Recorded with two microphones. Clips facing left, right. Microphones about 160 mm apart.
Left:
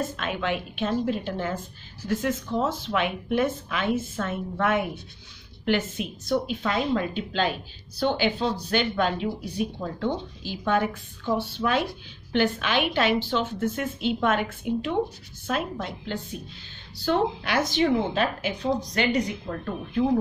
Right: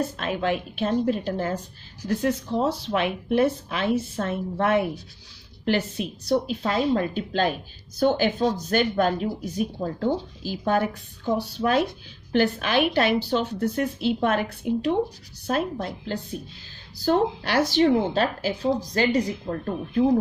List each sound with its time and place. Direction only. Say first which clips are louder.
0.2 s speech: right 3 dB; 35° right (ahead or behind)
17.0 s speech: right 2 dB; 40° right (ahead or behind)